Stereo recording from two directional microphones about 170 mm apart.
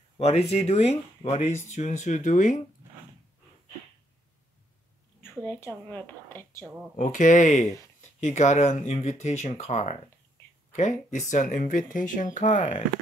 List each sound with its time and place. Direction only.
0.2 s speech: 40° left (ahead or behind)
5.3 s a woman's voice: 10° left (ahead or behind)
7.0 s speech: 50° left (ahead or behind)